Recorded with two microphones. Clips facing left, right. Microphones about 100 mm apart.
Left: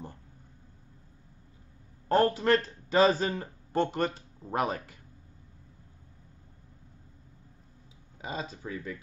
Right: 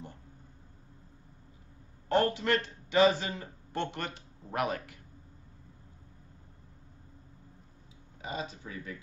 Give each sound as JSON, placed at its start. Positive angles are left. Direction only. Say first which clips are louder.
{"t": 2.0, "sound": "a man's voice", "louder": "left 3 dB", "side_deg": 40}
{"t": 8.2, "sound": "speech", "louder": "left 1 dB", "side_deg": 35}